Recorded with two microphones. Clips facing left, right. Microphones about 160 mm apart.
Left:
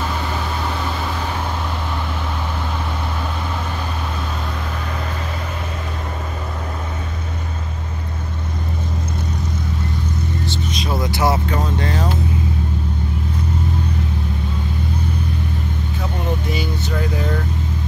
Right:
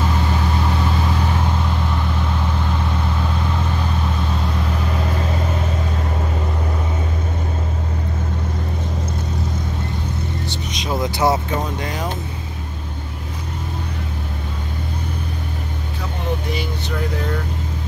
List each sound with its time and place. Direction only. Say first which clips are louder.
10.9 s vehicle: right 2 dB; 20° right (ahead or behind)